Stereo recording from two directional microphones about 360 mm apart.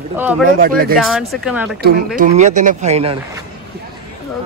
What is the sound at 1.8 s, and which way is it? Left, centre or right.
Speech, right.